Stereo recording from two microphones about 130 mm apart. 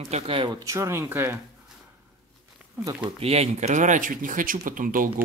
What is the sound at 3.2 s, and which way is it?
Speech, 55° right (ahead or behind).